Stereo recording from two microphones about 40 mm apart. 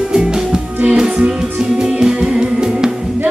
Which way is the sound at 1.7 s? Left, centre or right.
Centre.